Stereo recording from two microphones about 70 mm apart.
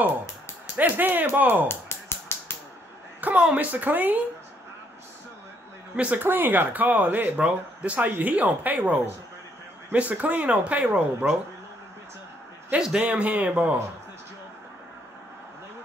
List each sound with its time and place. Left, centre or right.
0.7 s speech: right
1.7 s a sound: left
3.2 s a sound: right
3.5 s speech: right
5.9 s speech: right
12.7 s a man's voice: centre
13.0 s speech: right